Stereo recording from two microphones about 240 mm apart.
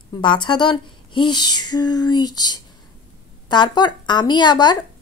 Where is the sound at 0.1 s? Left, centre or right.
Centre.